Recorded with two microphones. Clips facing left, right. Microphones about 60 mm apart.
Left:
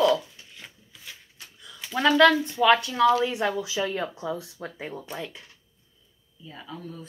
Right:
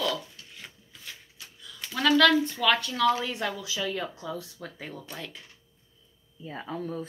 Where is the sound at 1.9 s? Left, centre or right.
Left.